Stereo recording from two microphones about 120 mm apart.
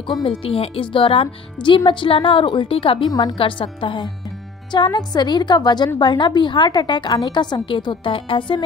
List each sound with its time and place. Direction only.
0.2 s speech: 50° left (ahead or behind)
3.1 s a woman's voice: 35° left (ahead or behind)
3.3 s a woman's voice: 45° left (ahead or behind)